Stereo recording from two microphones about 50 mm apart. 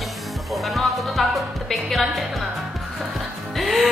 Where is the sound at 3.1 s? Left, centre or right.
Centre.